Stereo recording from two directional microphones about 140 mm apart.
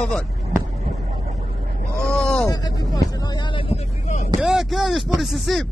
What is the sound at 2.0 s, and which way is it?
Sheep, 5° left (ahead or behind).